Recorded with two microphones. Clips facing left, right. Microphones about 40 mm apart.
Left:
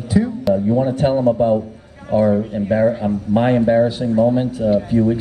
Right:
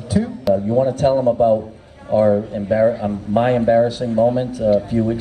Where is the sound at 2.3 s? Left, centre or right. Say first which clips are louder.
Even; left.